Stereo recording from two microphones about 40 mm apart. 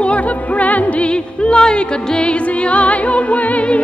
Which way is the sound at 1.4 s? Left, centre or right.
Left.